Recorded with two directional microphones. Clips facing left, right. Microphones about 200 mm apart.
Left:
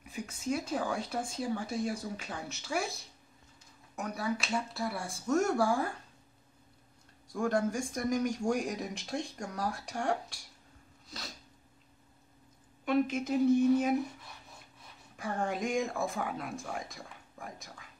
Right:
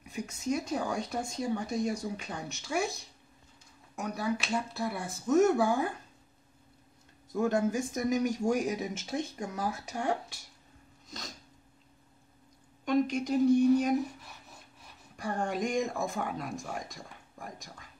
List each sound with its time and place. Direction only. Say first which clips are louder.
0.1 s speech: right 2 dB; centre (ahead or behind)
3.9 s speech: right 2 dB; centre (ahead or behind)
4.9 s speech: right 1 dB; 20° right (ahead or behind)
5.2 s speech: right 5 dB; 5° right (ahead or behind)
7.4 s speech: right 2 dB; 25° right (ahead or behind)
7.8 s speech: right 2 dB; 5° right (ahead or behind)
11.1 s a sound: right 2 dB; centre (ahead or behind)
12.8 s speech: right 1 dB; 5° left (ahead or behind)
15.1 s speech: right 1 dB; centre (ahead or behind)